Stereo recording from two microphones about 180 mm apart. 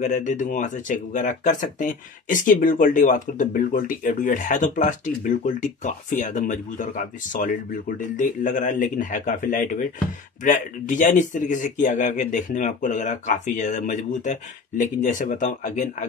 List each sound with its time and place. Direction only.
0.0 s speech: 45° left (ahead or behind)